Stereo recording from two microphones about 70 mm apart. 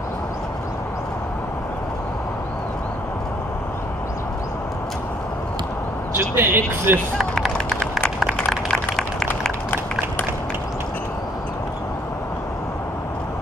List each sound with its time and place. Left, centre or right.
6.1 s speech: right
7.2 s run: centre
8.5 s a sound: centre